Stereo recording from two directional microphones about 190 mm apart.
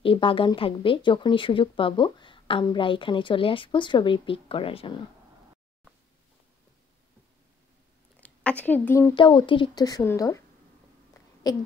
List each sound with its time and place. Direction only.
0.0 s speech: 30° left (ahead or behind)
8.2 s speech: 5° left (ahead or behind)
9.1 s speech: 25° left (ahead or behind)